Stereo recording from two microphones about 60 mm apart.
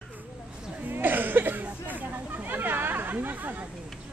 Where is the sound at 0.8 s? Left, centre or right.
Right.